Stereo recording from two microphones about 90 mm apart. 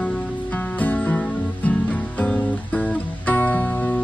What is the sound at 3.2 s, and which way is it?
Music, 20° left (ahead or behind).